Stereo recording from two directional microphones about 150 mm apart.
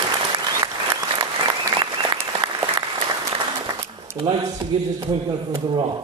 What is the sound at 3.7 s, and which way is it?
A man's voice, 30° right (ahead or behind).